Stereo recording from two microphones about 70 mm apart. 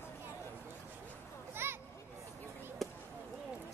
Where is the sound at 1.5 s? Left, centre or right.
Right.